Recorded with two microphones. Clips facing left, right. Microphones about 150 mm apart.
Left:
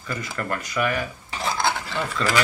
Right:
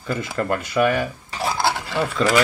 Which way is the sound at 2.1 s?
20° right (ahead or behind).